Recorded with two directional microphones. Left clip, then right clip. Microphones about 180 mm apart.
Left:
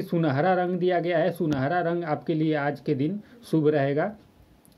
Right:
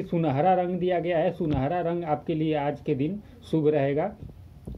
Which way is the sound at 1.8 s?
45° left (ahead or behind).